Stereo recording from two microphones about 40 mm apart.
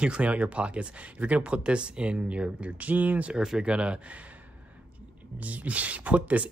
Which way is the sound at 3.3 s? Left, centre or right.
Centre.